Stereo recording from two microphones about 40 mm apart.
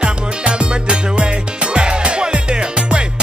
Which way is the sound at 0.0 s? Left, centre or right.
Right.